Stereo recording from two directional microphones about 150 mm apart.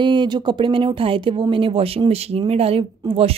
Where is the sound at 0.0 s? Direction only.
30° right (ahead or behind).